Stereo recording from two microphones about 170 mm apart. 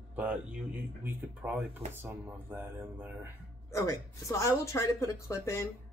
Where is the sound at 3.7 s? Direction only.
20° left (ahead or behind).